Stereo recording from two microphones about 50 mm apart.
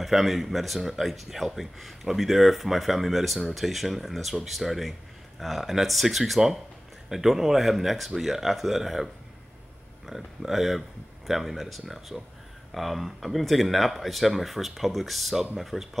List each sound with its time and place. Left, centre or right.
0.0 s speech: centre